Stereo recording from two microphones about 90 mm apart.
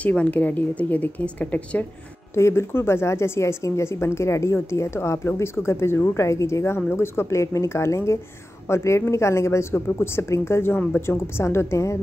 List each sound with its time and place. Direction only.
0.0 s a woman's voice: 15° left (ahead or behind)
2.3 s a woman's voice: 30° left (ahead or behind)